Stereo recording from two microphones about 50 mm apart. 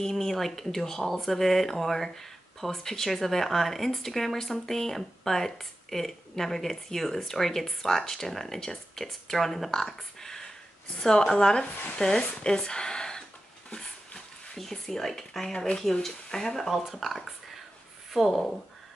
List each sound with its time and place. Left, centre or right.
0.0 s speech: centre
13.7 s dog: centre
14.6 s speech: centre